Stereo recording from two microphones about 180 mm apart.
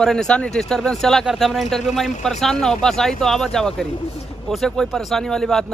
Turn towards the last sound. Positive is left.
turn(degrees=5)  # may be behind; listen again after turning